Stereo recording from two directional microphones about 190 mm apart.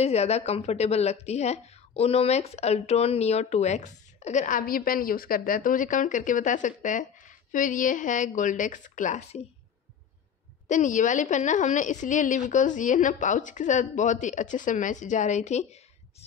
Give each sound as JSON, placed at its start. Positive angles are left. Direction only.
{"t": 0.0, "sound": "speech", "side_deg": 35}
{"t": 10.7, "sound": "speech", "side_deg": 40}